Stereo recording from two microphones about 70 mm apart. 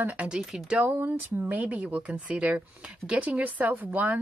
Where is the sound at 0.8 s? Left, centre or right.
Right.